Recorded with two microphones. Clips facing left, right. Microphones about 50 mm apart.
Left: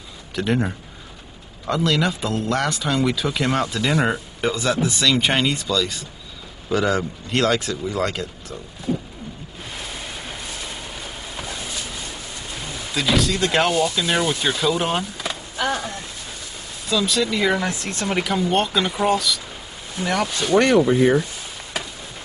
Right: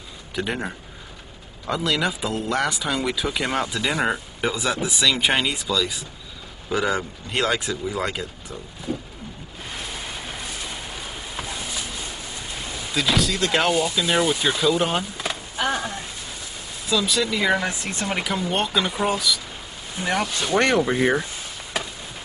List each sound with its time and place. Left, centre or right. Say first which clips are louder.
0.4 s speech: left 5 dB; centre
8.9 s wild animals: left 4 dB; centre
9.8 s a sound: even; centre
12.9 s speech: left 2 dB; centre
15.6 s speech: left 1 dB; centre
16.8 s speech: left 1 dB; centre
20.5 s speech: left 4 dB; right